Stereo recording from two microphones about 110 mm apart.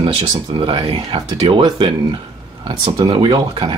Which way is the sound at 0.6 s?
55° right (ahead or behind).